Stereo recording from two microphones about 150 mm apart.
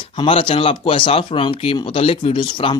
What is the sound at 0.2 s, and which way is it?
Speech, 35° left (ahead or behind).